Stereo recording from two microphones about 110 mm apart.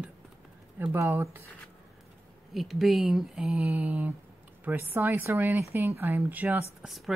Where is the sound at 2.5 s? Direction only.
Centre (ahead or behind).